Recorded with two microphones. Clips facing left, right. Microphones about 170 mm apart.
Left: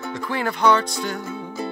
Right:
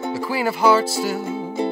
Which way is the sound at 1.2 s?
25° right (ahead or behind).